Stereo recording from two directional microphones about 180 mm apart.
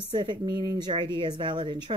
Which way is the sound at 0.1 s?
25° right (ahead or behind).